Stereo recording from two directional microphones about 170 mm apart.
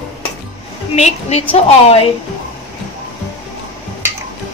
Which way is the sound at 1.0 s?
40° left (ahead or behind).